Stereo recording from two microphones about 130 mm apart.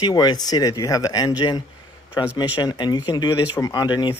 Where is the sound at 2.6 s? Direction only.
35° left (ahead or behind).